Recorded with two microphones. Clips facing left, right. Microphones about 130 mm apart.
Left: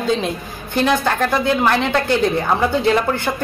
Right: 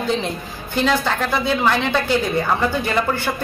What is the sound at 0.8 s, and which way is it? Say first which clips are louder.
Speech: left 2 dB; 15° left (ahead or behind).